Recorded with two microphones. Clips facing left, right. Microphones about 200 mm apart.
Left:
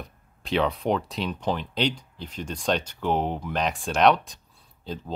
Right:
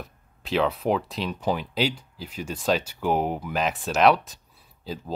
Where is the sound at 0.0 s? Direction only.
Centre (ahead or behind).